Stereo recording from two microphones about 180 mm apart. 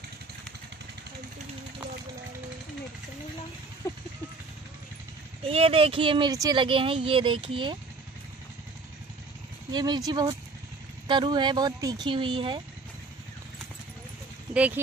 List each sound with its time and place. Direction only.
3.8 s a sound: 15° left (ahead or behind)
5.4 s speech: 35° right (ahead or behind)
9.7 s speech: 25° right (ahead or behind)
14.5 s speech: 10° right (ahead or behind)